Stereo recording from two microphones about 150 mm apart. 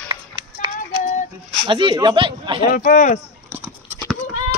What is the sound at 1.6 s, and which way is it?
Speech, 35° right (ahead or behind).